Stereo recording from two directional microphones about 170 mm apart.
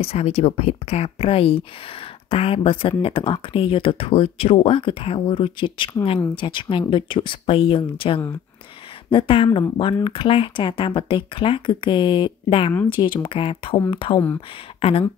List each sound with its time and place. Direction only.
0.0 s speech: 35° left (ahead or behind)